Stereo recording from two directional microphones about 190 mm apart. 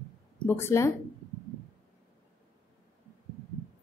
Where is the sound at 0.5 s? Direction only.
15° left (ahead or behind).